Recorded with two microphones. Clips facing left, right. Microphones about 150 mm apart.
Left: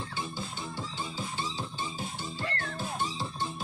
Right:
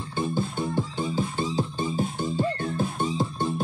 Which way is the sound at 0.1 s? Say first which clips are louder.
Right 10 dB; 55° right (ahead or behind).